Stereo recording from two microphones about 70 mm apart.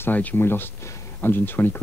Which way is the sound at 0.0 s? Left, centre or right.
Left.